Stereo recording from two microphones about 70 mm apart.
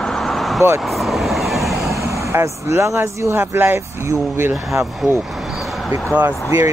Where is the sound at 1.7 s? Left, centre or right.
Right.